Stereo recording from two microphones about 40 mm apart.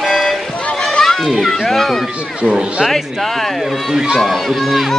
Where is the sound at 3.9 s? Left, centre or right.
Centre.